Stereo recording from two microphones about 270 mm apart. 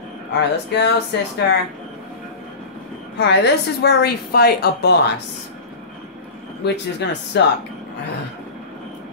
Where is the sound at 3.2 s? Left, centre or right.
Left.